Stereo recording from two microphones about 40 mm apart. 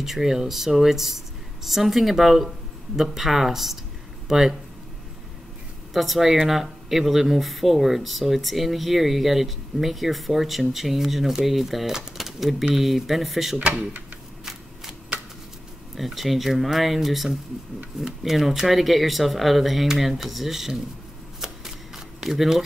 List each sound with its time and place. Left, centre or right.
0.0 s speech: centre
5.9 s speech: centre
14.4 s shuffling cards: centre
15.9 s speech: centre
21.4 s shuffling cards: centre